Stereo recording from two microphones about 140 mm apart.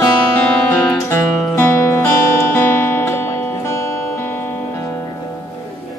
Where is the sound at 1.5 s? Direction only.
15° left (ahead or behind).